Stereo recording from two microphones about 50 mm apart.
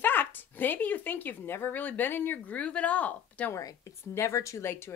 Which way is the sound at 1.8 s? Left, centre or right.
Left.